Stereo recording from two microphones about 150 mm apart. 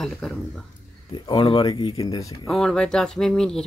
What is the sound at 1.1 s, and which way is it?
Speech, 35° left (ahead or behind).